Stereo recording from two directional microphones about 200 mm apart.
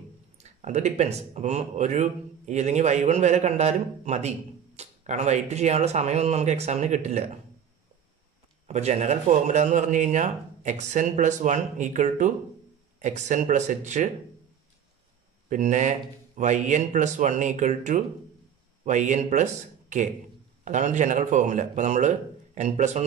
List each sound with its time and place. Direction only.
0.4 s speech: 35° right (ahead or behind)
8.6 s speech: 35° right (ahead or behind)
15.5 s speech: 40° right (ahead or behind)